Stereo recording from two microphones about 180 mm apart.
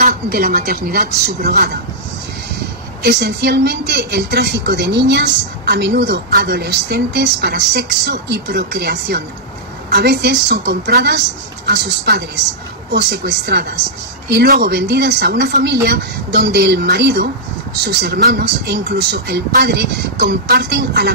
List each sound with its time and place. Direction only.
0.0 s speech: 60° right (ahead or behind)
3.0 s a woman's voice: 65° right (ahead or behind)